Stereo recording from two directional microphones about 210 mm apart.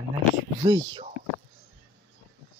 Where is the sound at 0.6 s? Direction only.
25° right (ahead or behind).